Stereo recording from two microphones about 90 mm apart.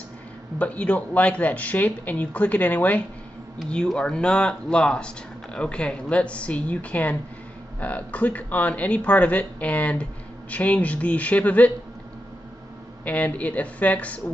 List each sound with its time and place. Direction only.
0.6 s speech: 15° left (ahead or behind)
13.0 s speech: 15° left (ahead or behind)